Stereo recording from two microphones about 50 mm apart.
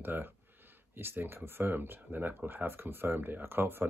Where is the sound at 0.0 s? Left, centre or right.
Right.